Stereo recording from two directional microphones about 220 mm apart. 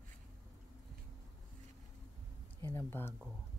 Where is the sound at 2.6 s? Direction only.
10° left (ahead or behind).